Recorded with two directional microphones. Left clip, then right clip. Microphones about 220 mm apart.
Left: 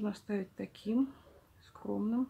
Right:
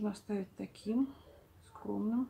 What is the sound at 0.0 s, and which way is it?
Speech, 35° left (ahead or behind).